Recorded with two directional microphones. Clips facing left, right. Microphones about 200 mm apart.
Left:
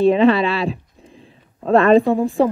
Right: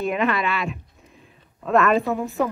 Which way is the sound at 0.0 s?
30° left (ahead or behind).